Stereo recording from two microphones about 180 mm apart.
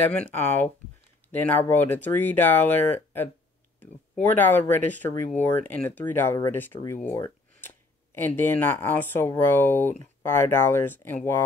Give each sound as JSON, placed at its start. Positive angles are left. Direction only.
{"t": 0.1, "sound": "speech", "side_deg": 5}
{"t": 6.8, "sound": "a sound", "side_deg": 10}
{"t": 8.4, "sound": "speech", "side_deg": 10}